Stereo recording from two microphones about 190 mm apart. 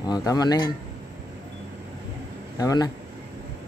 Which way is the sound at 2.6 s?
20° left (ahead or behind).